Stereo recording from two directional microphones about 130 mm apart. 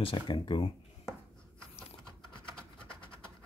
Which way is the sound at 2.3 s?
10° left (ahead or behind).